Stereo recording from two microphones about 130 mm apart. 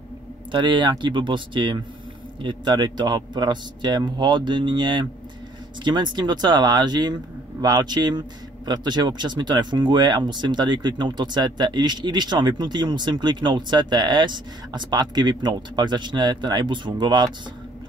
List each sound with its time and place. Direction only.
0.5 s speech: 35° right (ahead or behind)